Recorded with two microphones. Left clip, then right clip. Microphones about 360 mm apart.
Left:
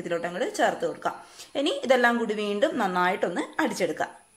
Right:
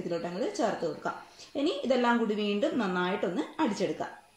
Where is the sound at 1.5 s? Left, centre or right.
Left.